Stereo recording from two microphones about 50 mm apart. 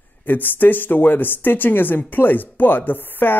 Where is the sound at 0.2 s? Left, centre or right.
Left.